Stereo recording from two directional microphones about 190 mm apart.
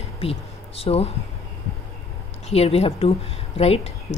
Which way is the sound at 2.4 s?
35° left (ahead or behind).